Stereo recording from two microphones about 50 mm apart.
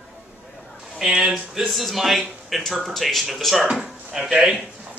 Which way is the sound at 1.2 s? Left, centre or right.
Centre.